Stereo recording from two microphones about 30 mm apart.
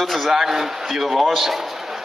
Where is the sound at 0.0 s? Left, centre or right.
Centre.